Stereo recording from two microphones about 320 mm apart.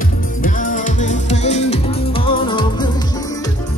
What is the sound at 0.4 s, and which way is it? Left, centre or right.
Music, left.